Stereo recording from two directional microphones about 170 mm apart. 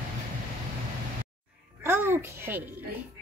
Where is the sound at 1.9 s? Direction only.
15° right (ahead or behind).